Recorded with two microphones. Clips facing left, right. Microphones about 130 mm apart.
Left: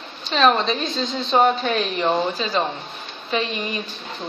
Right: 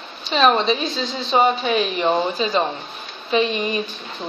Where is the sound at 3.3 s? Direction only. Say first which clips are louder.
Right 5 dB; 25° right (ahead or behind).